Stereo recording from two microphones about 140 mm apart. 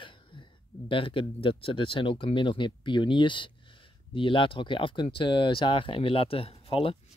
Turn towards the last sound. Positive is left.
turn(degrees=40)  # may be behind; listen again after turning